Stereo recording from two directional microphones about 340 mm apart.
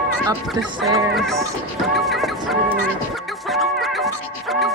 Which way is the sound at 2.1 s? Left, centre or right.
Centre.